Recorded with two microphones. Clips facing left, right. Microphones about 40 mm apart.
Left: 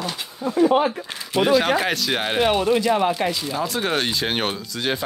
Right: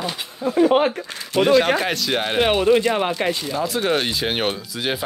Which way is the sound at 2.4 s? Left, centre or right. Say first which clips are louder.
Right 3 dB; centre.